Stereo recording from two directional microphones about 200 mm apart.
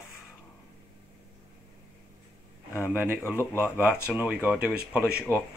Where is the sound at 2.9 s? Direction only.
10° right (ahead or behind).